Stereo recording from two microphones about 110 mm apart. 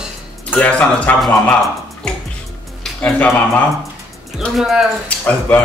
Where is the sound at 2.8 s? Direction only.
10° left (ahead or behind).